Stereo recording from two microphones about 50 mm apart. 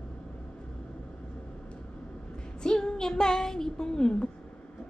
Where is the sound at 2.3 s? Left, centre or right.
Centre.